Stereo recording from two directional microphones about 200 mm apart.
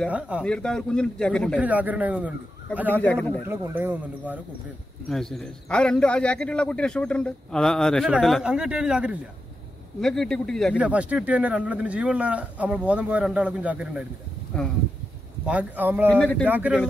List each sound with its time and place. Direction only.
0.4 s a man's voice: 5° left (ahead or behind)
1.6 s speech: 10° right (ahead or behind)
3.0 s a man's voice: 10° left (ahead or behind)
3.4 s a man's voice: 10° right (ahead or behind)
15.4 s speech: 5° right (ahead or behind)
16.1 s a man's voice: 5° left (ahead or behind)
16.4 s speech: 10° right (ahead or behind)